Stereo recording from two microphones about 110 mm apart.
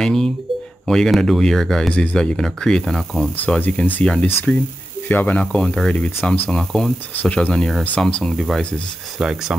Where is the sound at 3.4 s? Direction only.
15° left (ahead or behind).